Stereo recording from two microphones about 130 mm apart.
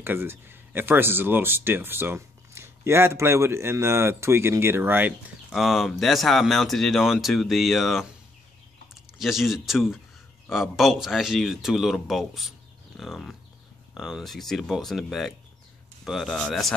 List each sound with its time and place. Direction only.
0.0 s speech: 15° right (ahead or behind)
5.5 s speech: centre (ahead or behind)
9.2 s speech: centre (ahead or behind)